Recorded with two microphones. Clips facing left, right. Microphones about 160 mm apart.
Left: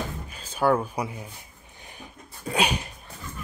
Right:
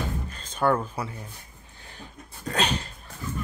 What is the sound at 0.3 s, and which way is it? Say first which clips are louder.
Speech: left 2 dB; 10° left (ahead or behind).